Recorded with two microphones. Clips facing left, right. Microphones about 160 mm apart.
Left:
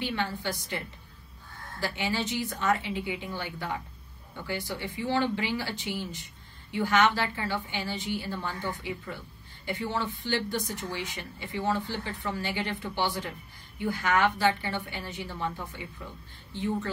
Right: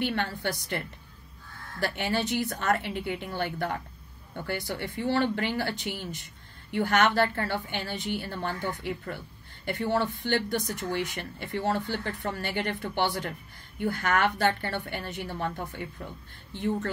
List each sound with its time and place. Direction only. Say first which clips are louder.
0.0 s speech: right 2 dB; 55° right (ahead or behind)